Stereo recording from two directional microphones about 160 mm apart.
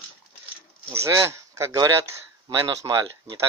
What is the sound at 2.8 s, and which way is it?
Speech, 25° right (ahead or behind).